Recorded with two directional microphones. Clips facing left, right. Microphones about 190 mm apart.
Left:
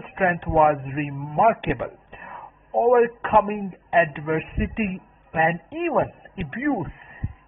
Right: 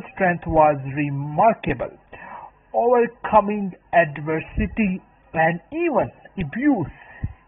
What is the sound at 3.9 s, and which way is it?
A man's voice, 15° right (ahead or behind).